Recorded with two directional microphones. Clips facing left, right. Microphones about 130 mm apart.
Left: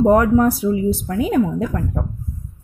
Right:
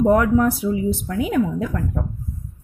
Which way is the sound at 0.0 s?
35° left (ahead or behind).